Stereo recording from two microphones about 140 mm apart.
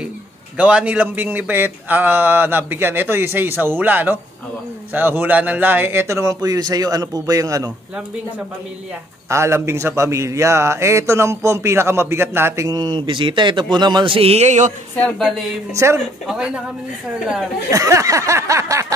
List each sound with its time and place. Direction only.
0.6 s a man's voice: 10° right (ahead or behind)
9.3 s a man's voice: 20° right (ahead or behind); by 14.7 s 55° right (ahead or behind)
15.0 s speech: 5° left (ahead or behind)
15.7 s a man's voice: 20° right (ahead or behind)
16.3 s speech: 5° right (ahead or behind)
17.6 s a man's voice: 20° right (ahead or behind)